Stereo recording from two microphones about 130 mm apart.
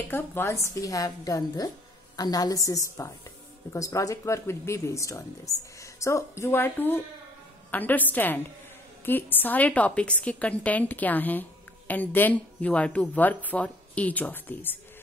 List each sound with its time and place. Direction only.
0.1 s a woman's voice: 15° left (ahead or behind)